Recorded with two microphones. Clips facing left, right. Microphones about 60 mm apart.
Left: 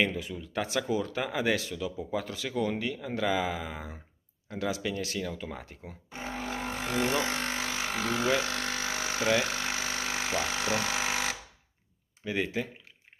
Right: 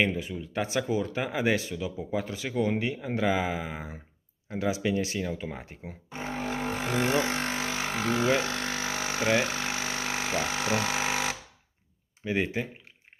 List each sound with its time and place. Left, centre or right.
0.0 s speech: centre
6.1 s vehicle: right
10.9 s a sound: centre
12.2 s speech: centre